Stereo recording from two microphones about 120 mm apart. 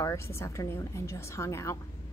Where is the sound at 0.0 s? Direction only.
25° left (ahead or behind).